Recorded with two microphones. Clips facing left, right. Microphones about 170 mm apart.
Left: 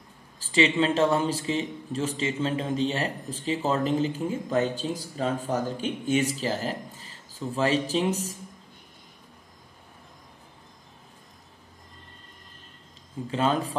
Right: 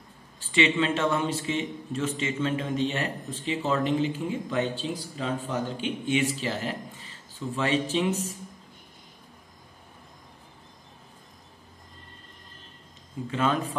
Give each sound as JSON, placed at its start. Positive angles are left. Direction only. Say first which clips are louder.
{"t": 0.4, "sound": "speech", "louder": "left 2 dB", "side_deg": 35}
{"t": 13.3, "sound": "speech", "louder": "left 1 dB", "side_deg": 35}